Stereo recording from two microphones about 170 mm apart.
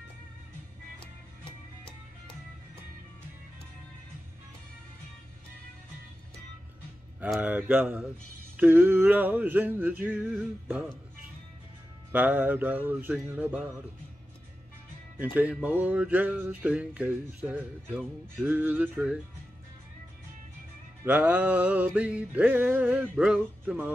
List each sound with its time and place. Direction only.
7.2 s music: 10° right (ahead or behind)
12.1 s music: 10° right (ahead or behind)
15.3 s music: 10° right (ahead or behind)
21.0 s music: 10° right (ahead or behind)